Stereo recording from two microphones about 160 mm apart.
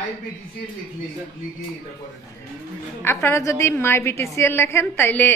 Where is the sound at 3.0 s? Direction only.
15° left (ahead or behind).